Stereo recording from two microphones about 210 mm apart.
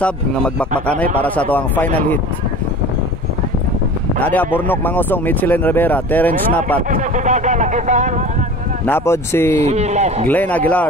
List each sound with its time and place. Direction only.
0.0 s speech: 5° left (ahead or behind)
4.2 s speech: 10° left (ahead or behind)
6.9 s speech: 35° right (ahead or behind)
8.8 s speech: 10° left (ahead or behind)
9.6 s speech: 30° right (ahead or behind)
10.2 s speech: 10° left (ahead or behind)